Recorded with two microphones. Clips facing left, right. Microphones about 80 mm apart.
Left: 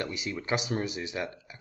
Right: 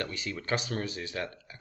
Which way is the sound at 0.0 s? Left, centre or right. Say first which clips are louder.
Left 2 dB; centre.